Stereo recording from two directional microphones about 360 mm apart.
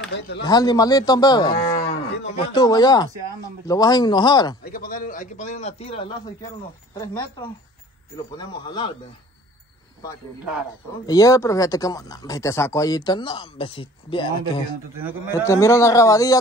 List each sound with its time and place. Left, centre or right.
0.1 s speech: left
0.5 s speech: centre
4.6 s a man's voice: left
11.1 s speech: centre
15.0 s a man's voice: centre
15.3 s speech: centre